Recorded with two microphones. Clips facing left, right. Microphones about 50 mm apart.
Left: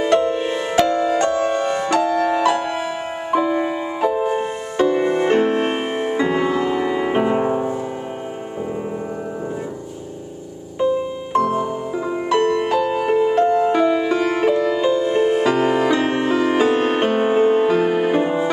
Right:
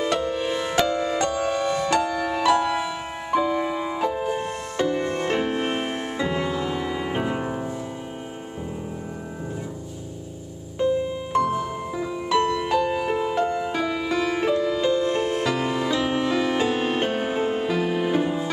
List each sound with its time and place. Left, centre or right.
0.0 s music: left
10.8 s music: centre
12.3 s music: left; by 13.7 s centre
13.7 s music: left
14.7 s music: centre
15.4 s music: left